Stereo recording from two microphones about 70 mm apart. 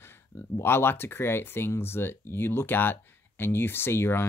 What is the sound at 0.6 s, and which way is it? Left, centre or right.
Speech, left.